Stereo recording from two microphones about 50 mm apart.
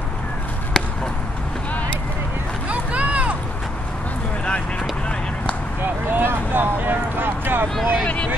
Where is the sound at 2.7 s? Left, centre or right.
Right.